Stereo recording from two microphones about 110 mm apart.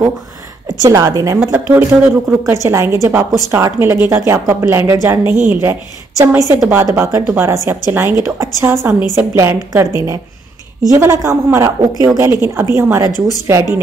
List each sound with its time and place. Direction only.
0.7 s a woman's voice: 30° right (ahead or behind)
1.5 s a woman's voice: 20° right (ahead or behind)